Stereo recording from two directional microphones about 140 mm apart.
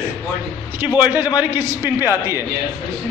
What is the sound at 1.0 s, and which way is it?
A man's voice, 15° right (ahead or behind).